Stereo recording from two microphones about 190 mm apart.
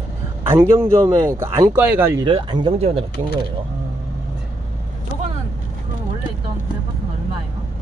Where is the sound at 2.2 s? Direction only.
25° right (ahead or behind).